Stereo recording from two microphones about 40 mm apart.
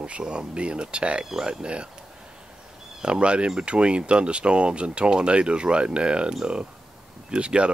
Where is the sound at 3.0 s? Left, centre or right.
Right.